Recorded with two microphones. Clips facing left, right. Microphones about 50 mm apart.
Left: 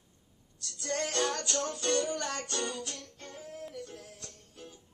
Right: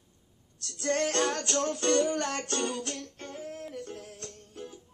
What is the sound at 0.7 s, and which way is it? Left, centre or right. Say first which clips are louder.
Music: right 6 dB; right.